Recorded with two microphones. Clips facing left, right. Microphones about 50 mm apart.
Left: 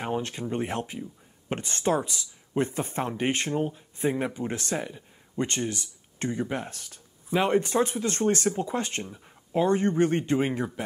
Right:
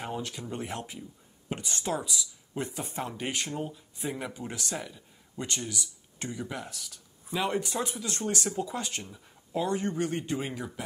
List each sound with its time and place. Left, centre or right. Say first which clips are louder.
0.0 s speech: left 6 dB; left